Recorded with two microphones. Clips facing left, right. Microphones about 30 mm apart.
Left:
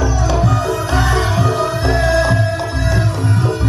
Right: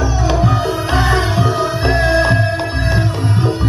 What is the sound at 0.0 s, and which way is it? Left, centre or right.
Music, right.